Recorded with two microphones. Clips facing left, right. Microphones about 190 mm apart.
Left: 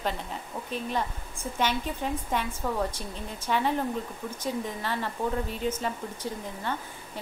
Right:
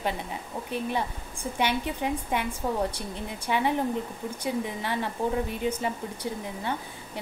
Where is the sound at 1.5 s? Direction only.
15° right (ahead or behind).